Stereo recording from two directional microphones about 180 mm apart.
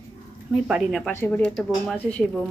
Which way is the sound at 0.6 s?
5° right (ahead or behind).